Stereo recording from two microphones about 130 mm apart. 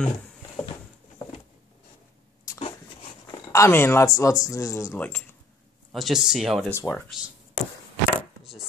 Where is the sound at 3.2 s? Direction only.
25° left (ahead or behind).